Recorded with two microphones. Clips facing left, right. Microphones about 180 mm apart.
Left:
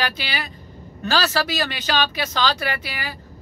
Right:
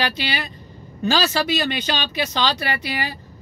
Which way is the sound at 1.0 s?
Centre (ahead or behind).